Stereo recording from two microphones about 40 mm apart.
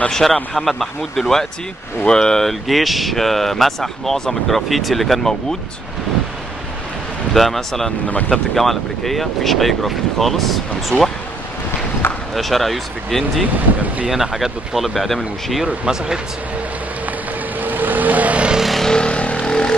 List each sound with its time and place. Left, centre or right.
0.1 s a man's voice: centre
2.0 s speech: centre
2.4 s speech: centre
7.3 s speech: centre
12.0 s basketball bounce: left
12.4 s speech: centre
14.0 s speech: centre
17.6 s vehicle: right
18.8 s vehicle: centre
19.4 s vehicle: centre